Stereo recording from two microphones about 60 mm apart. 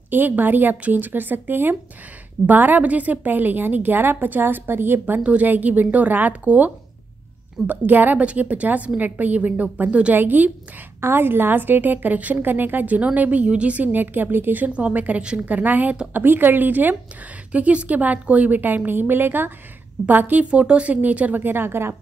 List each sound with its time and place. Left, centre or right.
0.1 s a woman's voice: right
5.2 s a woman's voice: right
17.5 s a woman's voice: right
20.4 s a woman's voice: centre; by 21.9 s right